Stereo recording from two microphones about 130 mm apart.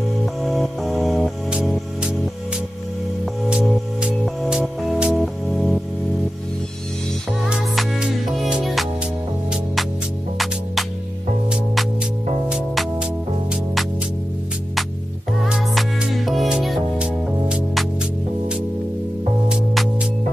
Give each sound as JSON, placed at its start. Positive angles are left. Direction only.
{"t": 0.2, "sound": "music", "side_deg": 0}
{"t": 3.4, "sound": "music", "side_deg": -5}
{"t": 7.4, "sound": "music", "side_deg": -5}
{"t": 10.3, "sound": "music", "side_deg": 0}
{"t": 12.4, "sound": "music", "side_deg": -5}
{"t": 15.4, "sound": "music", "side_deg": -5}
{"t": 19.5, "sound": "music", "side_deg": -5}